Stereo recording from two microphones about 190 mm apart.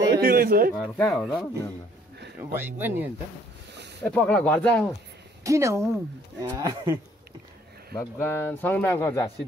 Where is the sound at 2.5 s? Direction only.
10° right (ahead or behind).